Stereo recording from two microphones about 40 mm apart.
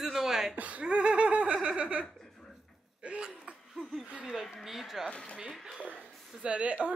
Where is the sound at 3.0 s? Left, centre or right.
Right.